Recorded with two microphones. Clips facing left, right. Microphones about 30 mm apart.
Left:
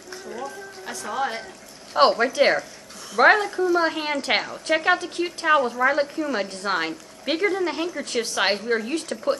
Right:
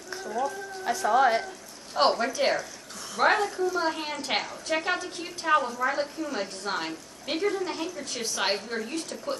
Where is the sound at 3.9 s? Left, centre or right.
Left.